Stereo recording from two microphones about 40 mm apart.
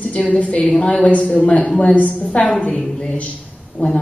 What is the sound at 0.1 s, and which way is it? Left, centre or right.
Speech, left.